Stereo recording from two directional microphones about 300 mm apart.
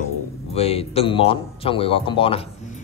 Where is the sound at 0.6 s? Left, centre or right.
Centre.